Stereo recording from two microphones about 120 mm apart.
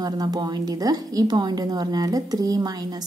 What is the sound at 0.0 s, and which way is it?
A woman's voice, 35° right (ahead or behind).